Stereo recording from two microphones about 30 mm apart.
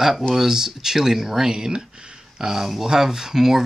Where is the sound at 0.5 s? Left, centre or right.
Centre.